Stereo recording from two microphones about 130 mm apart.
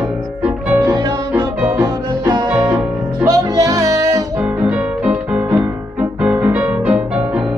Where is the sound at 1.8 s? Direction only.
30° right (ahead or behind).